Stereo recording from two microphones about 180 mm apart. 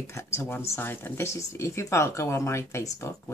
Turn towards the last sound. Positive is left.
turn(degrees=15)  # may be behind; listen again after turning